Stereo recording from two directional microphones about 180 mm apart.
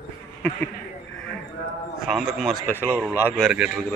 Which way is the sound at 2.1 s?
Centre (ahead or behind).